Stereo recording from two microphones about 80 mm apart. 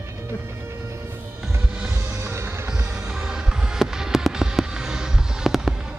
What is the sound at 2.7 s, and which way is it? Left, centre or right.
Fireworks, centre.